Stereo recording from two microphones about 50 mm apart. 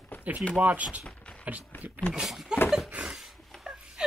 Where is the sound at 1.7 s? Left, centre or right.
Left.